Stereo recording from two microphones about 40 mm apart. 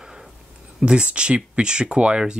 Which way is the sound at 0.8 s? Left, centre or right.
Right.